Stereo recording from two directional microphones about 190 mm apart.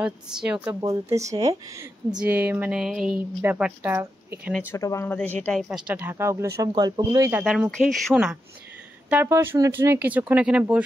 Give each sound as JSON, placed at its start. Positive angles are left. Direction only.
{"t": 0.0, "sound": "a woman's voice", "side_deg": -5}
{"t": 0.8, "sound": "a woman's voice", "side_deg": -15}
{"t": 4.5, "sound": "a woman's voice", "side_deg": 10}